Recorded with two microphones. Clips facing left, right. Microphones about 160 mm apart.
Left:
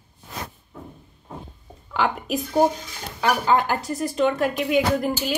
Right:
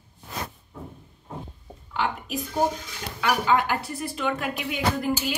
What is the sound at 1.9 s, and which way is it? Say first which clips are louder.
Speech: left 4 dB; 80° left.